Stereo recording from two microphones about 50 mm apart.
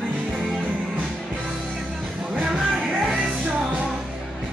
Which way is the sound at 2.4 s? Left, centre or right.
Centre.